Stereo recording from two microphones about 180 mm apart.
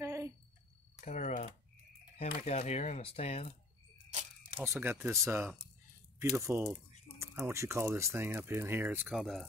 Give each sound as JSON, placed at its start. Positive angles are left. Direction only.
{"t": 0.0, "sound": "a sound", "side_deg": -15}
{"t": 1.0, "sound": "typing", "side_deg": 40}
{"t": 2.1, "sound": "speech", "side_deg": 35}
{"t": 4.6, "sound": "speech", "side_deg": -15}